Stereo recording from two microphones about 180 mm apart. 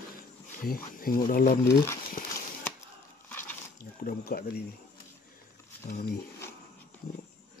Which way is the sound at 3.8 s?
55° left (ahead or behind).